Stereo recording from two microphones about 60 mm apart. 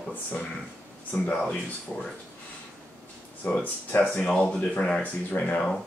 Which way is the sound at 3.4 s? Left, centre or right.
Left.